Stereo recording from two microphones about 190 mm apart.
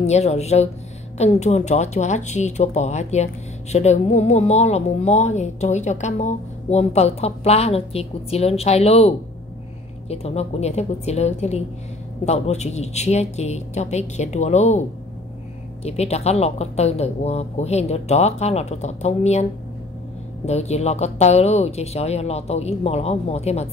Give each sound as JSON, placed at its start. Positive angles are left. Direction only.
{"t": 0.0, "sound": "a woman's voice", "side_deg": 35}
{"t": 15.8, "sound": "a woman's voice", "side_deg": 35}
{"t": 20.4, "sound": "a woman's voice", "side_deg": 35}